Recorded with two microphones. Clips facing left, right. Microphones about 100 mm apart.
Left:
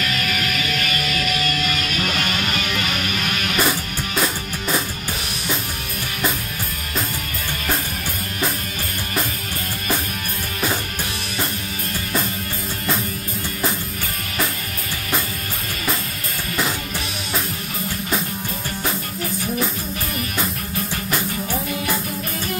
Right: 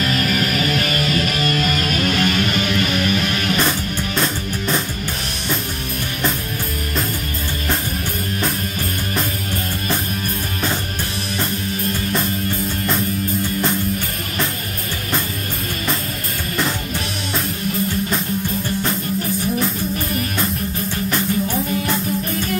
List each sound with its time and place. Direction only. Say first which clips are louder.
0.0 s music: right 5 dB; 40° right (ahead or behind)
3.5 s music: right 1 dB; 5° left (ahead or behind)